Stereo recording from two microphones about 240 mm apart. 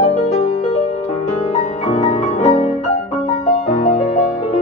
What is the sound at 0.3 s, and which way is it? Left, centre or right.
Music, left.